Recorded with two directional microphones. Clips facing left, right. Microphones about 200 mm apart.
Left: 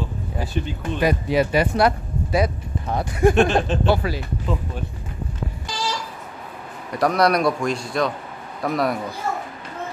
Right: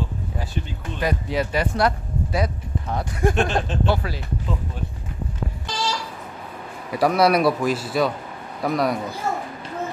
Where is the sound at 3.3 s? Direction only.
65° left (ahead or behind).